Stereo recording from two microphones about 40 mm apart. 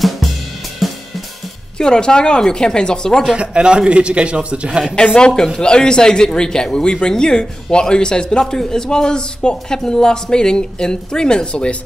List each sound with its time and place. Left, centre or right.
0.8 s cymbal: centre
1.8 s a man's voice: left
3.3 s speech: right
4.9 s a man's voice: left